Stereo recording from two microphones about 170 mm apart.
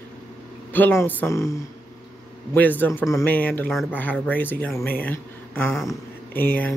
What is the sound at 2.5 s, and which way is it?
Speech, 10° left (ahead or behind).